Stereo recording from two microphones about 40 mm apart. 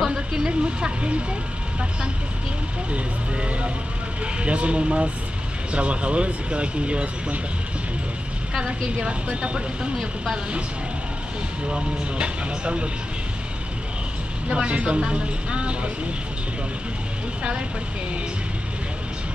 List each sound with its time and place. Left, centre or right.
0.1 s a sound: centre
0.5 s a sound: right
2.9 s speech: right
8.5 s speech: right
11.7 s speech: right
14.5 s speech: right